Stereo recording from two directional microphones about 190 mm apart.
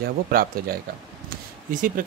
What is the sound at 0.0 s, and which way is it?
Speech, 50° right (ahead or behind).